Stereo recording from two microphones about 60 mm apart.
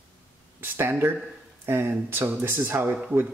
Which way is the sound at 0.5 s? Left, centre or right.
Right.